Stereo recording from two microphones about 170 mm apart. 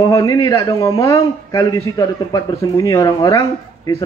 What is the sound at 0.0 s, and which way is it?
A man's voice, 20° left (ahead or behind).